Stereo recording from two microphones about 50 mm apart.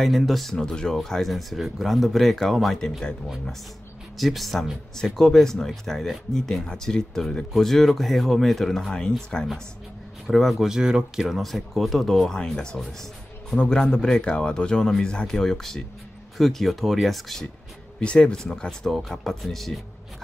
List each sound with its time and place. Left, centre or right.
0.0 s speech: centre
0.7 s speech: centre
4.2 s speech: centre
10.2 s speech: centre
13.8 s speech: centre
18.0 s speech: centre